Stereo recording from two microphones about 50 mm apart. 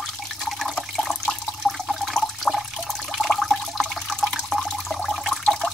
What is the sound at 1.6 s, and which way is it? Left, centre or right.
Toilet flush, centre.